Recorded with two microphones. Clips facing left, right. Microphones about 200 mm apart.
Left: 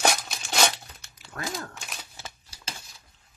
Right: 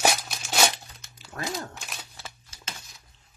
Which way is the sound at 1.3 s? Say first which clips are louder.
Right 1 dB; 20° right (ahead or behind).